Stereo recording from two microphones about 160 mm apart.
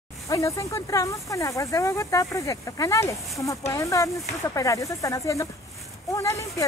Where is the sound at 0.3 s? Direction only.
20° left (ahead or behind).